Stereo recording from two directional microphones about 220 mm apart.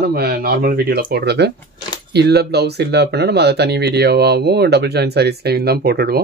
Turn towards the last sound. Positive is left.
turn(degrees=-45)  # may be behind; listen again after turning